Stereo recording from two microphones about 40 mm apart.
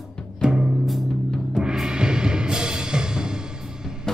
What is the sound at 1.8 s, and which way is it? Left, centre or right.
Music, right.